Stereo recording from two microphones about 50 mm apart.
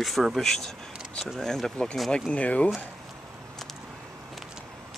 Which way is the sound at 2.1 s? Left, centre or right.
Left.